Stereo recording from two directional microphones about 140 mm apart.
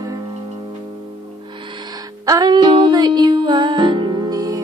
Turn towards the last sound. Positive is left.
turn(degrees=-25)  # may be behind; listen again after turning